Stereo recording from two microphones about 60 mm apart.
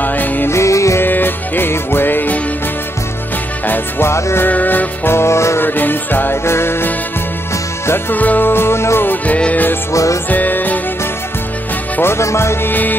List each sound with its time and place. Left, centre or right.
0.0 s music: left
0.5 s music: left
1.0 s music: left
3.6 s music: left
4.1 s music: left
4.5 s music: left
5.1 s music: left
5.6 s music: left
8.1 s music: left
9.1 s music: left
12.0 s music: left